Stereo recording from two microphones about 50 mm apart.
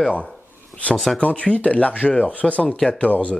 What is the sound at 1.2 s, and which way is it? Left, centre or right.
Speech, left.